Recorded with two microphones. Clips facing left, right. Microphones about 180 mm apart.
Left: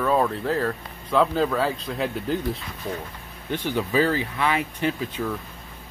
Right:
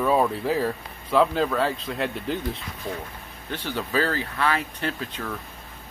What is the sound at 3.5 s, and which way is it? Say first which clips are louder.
Speech: left 3 dB; 15° left (ahead or behind).